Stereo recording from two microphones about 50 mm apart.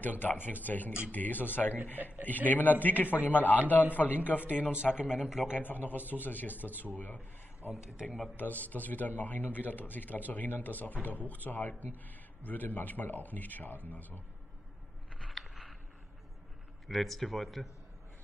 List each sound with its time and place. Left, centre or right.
0.0 s a man's voice: left
4.9 s a man's voice: right
5.5 s a man's voice: left
8.4 s a man's voice: left
15.3 s a sound: centre
16.8 s speech: centre